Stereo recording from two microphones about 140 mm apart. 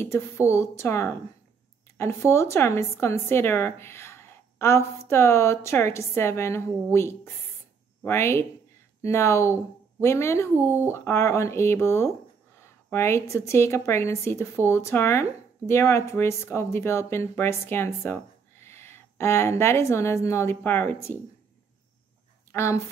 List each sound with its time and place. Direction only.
0.0 s a woman's voice: 20° left (ahead or behind)
22.5 s speech: 20° left (ahead or behind)